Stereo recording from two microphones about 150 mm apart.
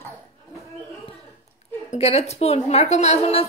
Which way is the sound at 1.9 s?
45° left (ahead or behind).